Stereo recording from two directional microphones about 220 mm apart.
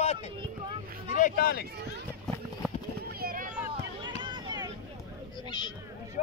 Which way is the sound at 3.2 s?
40° right (ahead or behind).